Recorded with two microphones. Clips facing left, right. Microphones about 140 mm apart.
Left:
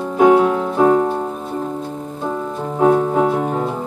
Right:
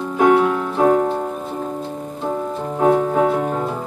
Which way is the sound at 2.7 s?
15° left (ahead or behind).